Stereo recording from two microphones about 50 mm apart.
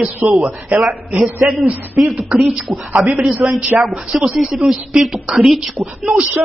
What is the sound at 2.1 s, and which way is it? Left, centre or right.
Beatboxing, right.